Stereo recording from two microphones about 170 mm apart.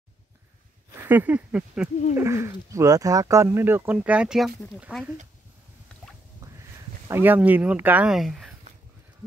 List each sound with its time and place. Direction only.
0.9 s speech: 10° right (ahead or behind)
7.1 s speech: 10° right (ahead or behind)